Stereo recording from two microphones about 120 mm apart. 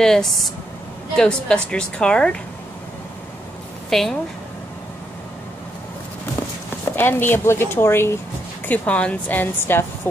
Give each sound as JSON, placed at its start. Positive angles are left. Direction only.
{"t": 0.0, "sound": "speech", "side_deg": 0}
{"t": 3.9, "sound": "speech", "side_deg": 0}
{"t": 7.0, "sound": "speech", "side_deg": 20}